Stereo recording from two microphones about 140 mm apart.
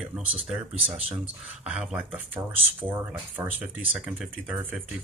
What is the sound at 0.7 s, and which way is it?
Speech, 45° right (ahead or behind).